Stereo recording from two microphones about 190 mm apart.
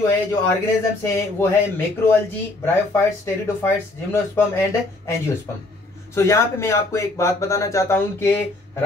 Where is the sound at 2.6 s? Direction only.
15° left (ahead or behind).